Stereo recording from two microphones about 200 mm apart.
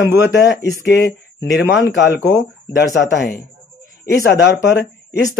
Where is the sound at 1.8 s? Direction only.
60° left (ahead or behind).